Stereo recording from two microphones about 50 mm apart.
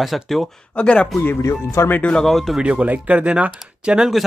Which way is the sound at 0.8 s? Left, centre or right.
Left.